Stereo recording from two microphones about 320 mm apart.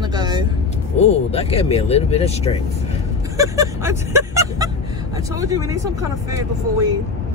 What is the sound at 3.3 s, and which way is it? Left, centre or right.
Speech, centre.